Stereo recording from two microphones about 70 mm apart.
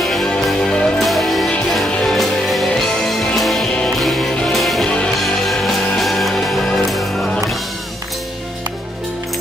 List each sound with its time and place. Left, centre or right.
0.0 s music: centre
1.0 s music: centre
1.9 s music: centre
2.1 s music: centre
4.8 s music: centre
5.2 s music: centre